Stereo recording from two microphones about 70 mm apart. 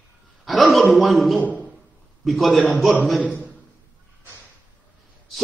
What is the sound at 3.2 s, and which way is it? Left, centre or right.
Speech, left.